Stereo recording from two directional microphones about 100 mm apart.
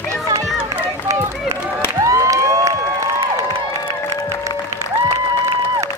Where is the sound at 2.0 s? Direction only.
35° right (ahead or behind).